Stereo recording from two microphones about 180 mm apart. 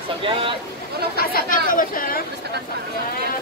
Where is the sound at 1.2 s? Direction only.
55° left (ahead or behind).